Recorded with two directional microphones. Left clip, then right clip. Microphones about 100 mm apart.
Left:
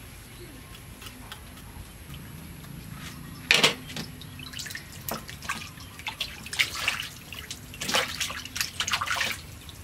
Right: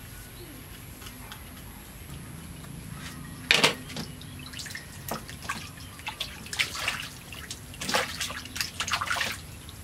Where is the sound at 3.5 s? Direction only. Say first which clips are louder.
Left 1 dB; 10° right (ahead or behind).